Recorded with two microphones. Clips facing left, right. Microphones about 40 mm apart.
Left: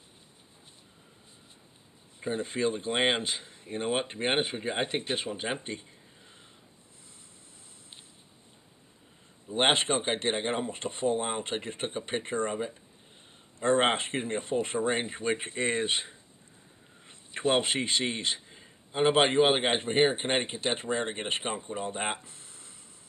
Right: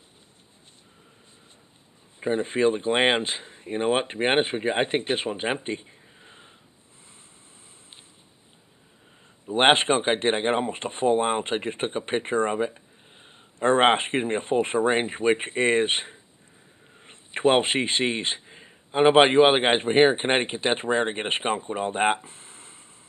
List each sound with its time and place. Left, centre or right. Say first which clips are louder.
2.1 s speech: right 7 dB; right
9.5 s speech: right 7 dB; right